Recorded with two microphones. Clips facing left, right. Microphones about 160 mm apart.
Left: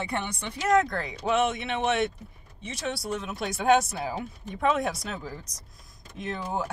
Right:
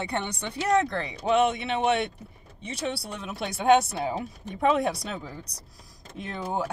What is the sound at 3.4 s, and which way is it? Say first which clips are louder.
Speech: right 2 dB; 30° right (ahead or behind).